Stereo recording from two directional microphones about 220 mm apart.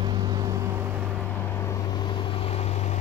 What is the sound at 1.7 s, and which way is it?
Vehicle, 20° left (ahead or behind).